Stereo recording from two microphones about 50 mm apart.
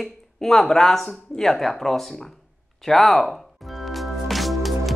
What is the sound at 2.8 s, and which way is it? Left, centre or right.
Music, centre.